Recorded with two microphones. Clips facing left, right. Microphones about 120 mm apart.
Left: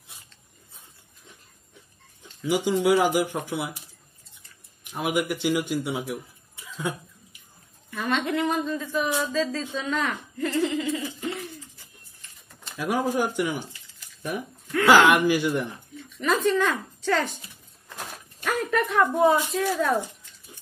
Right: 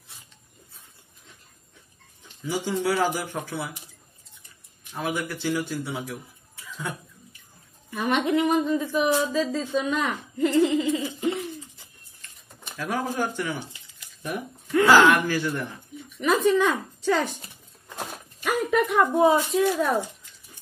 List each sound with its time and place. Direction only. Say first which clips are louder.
2.4 s speech: left 4 dB; 15° left (ahead or behind)
4.9 s a man's voice: left 3 dB; 15° left (ahead or behind)
7.9 s a woman's voice: right 3 dB; 15° right (ahead or behind)
12.7 s speech: left 3 dB; 15° left (ahead or behind)
14.9 s speech: left 1 dB; 15° left (ahead or behind)
16.0 s speech: right 2 dB; 15° right (ahead or behind)
18.4 s a woman's voice: right 2 dB; 10° right (ahead or behind)